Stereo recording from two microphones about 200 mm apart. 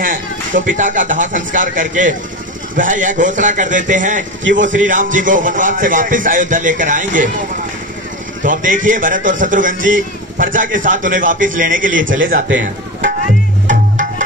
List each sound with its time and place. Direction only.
0.0 s a man's voice: 40° right (ahead or behind)
4.5 s a man's voice: 70° right (ahead or behind)
4.8 s a man's voice: 40° right (ahead or behind)
8.5 s a man's voice: 40° right (ahead or behind)
13.7 s music: 40° right (ahead or behind)